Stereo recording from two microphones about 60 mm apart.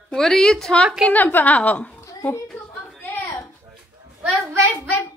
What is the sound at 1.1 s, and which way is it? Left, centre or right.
Speech, left.